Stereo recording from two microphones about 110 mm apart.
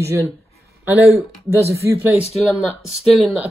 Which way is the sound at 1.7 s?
25° right (ahead or behind).